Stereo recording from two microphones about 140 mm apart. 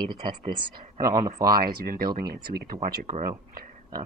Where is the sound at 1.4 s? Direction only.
90° right.